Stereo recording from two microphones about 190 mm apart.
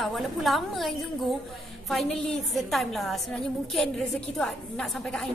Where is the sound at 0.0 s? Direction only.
Centre (ahead or behind).